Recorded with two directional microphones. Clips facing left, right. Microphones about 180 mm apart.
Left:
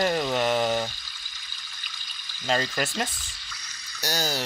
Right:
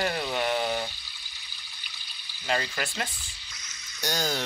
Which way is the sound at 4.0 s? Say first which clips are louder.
Left 1 dB; 5° left (ahead or behind).